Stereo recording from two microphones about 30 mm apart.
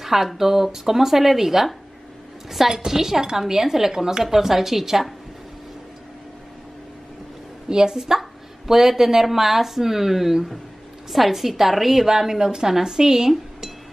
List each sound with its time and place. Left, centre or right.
0.0 s a woman's voice: centre
2.7 s a woman's voice: centre
3.9 s a woman's voice: right
7.7 s a woman's voice: right
8.0 s a woman's voice: centre